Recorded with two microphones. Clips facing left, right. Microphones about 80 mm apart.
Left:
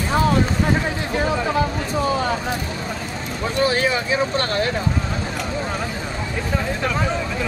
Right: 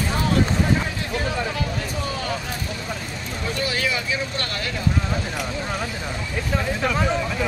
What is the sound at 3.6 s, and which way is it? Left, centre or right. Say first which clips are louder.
Speech: left 7 dB; left.